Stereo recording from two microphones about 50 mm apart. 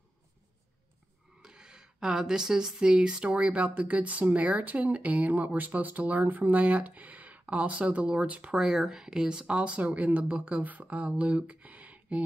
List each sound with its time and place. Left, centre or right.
1.4 s speech: centre
8.5 s speech: centre; by 12.2 s right